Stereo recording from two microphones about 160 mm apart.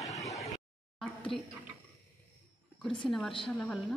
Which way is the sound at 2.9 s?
5° left (ahead or behind).